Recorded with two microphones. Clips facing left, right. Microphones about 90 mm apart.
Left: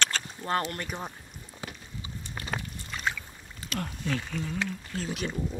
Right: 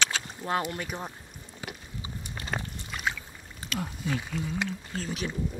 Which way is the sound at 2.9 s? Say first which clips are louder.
Even; 5° right (ahead or behind).